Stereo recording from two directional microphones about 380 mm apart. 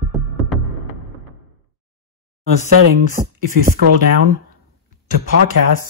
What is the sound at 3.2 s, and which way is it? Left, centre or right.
Speech, centre.